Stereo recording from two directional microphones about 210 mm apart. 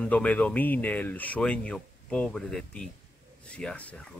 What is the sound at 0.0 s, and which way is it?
Speech, 5° left (ahead or behind).